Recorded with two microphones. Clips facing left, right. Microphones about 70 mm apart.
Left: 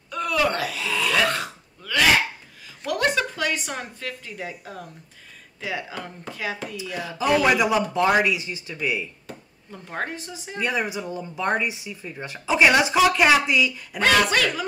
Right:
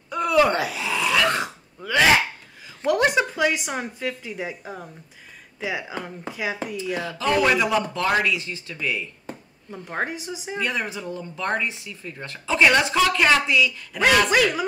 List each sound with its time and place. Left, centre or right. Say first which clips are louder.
0.1 s a sound: right 4 dB; centre
3.2 s speech: right 4 dB; centre
7.0 s speech: left 1 dB; centre
9.7 s speech: right 2 dB; centre
10.6 s speech: left 3 dB; centre
13.9 s speech: right 1 dB; centre